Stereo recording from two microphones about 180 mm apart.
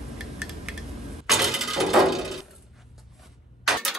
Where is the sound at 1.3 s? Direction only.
Centre (ahead or behind).